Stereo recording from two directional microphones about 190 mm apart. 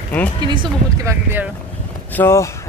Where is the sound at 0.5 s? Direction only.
25° right (ahead or behind).